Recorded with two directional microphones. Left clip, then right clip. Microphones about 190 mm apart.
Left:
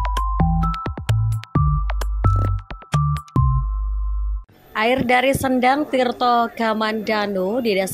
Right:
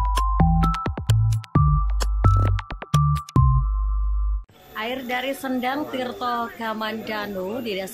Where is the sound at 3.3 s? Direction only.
Centre (ahead or behind).